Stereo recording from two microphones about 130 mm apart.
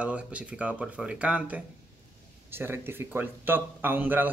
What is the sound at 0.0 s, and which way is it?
Speech, 10° right (ahead or behind).